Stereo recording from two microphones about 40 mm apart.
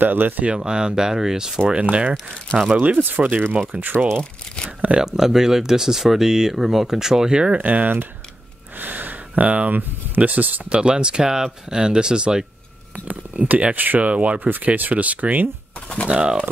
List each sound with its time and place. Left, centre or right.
0.0 s speech: right
0.4 s speech: right
1.7 s speech: right
3.0 s speech: right
3.7 s speech: right
4.6 s shuffling cards: right
5.0 s speech: centre
7.5 s speech: right
10.7 s speech: right
12.9 s speech: right
14.0 s speech: right
14.4 s speech: right
16.1 s speech: right